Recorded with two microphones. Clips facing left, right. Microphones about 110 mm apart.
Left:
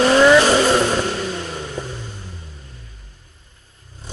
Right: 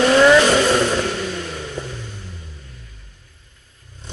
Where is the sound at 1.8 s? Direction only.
35° left (ahead or behind).